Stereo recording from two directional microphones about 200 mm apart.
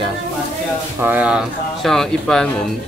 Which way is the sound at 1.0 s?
10° right (ahead or behind).